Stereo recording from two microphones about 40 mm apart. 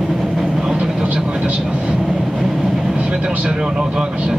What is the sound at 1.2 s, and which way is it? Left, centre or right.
Speech, right.